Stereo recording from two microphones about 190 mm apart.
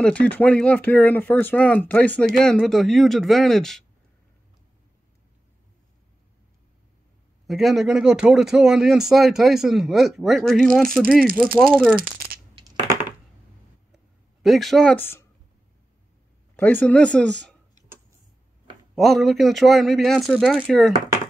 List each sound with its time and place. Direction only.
0.0 s speech: 5° left (ahead or behind)
7.4 s speech: centre (ahead or behind)
12.5 s coin: 20° right (ahead or behind)
13.9 s a sound: centre (ahead or behind)
16.5 s speech: 10° left (ahead or behind)
18.9 s speech: centre (ahead or behind)